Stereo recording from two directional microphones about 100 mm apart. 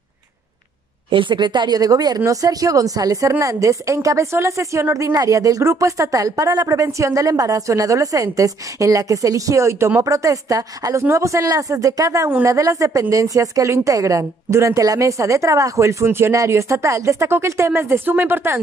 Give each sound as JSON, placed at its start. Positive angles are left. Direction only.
{"t": 1.1, "sound": "speech", "side_deg": -55}